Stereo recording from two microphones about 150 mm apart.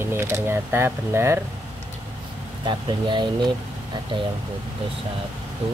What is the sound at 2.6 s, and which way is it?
Speech, 30° right (ahead or behind).